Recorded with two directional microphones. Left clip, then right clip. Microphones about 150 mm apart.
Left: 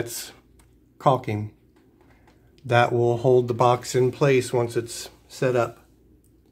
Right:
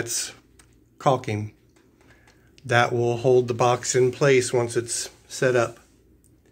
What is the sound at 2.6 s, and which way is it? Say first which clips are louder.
Speech: left 1 dB; 15° left (ahead or behind).